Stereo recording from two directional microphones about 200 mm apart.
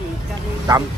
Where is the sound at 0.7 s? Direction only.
20° right (ahead or behind).